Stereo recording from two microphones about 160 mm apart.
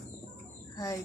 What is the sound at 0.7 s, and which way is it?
Bird, 20° left (ahead or behind).